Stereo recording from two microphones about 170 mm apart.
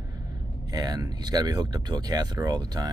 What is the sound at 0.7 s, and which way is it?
Speech, 20° right (ahead or behind).